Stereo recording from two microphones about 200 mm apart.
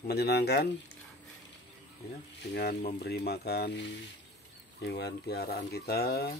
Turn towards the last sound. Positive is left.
turn(degrees=55)  # may be behind; listen again after turning